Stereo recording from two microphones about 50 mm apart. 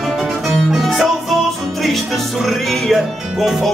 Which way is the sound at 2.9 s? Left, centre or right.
Centre.